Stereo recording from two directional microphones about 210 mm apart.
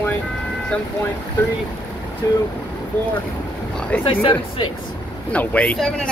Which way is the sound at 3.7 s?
5° left (ahead or behind).